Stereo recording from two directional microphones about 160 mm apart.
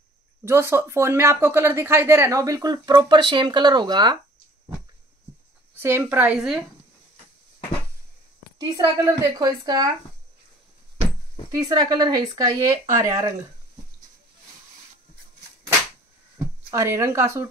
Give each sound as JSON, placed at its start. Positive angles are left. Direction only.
{"t": 0.5, "sound": "speech", "side_deg": -15}
{"t": 5.8, "sound": "a woman's voice", "side_deg": -15}
{"t": 8.5, "sound": "speech", "side_deg": -20}
{"t": 11.5, "sound": "speech", "side_deg": -25}
{"t": 16.7, "sound": "a woman's voice", "side_deg": -15}